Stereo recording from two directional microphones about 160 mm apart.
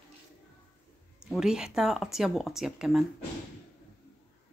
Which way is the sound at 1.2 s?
5° right (ahead or behind).